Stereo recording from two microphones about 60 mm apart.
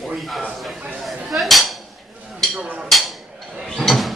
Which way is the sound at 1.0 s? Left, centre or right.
Centre.